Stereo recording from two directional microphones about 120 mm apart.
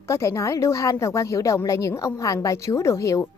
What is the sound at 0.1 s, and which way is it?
A woman's voice, 25° left (ahead or behind).